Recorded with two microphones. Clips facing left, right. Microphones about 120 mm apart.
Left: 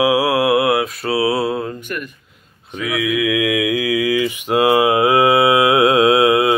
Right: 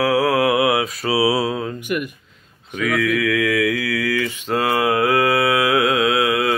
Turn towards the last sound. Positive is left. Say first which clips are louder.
# left 5 dB
turn(degrees=20)  # may be behind; listen again after turning